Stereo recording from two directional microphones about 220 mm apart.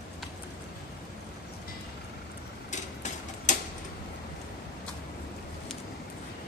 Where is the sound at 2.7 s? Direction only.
35° left (ahead or behind).